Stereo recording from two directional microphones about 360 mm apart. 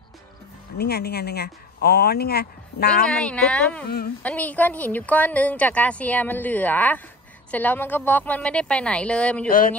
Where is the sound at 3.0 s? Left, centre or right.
Centre.